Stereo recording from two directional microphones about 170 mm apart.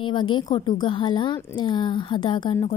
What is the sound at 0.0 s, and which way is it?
A woman's voice, 30° left (ahead or behind).